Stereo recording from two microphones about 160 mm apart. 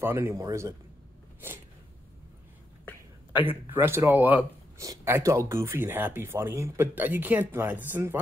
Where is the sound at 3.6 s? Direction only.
15° right (ahead or behind).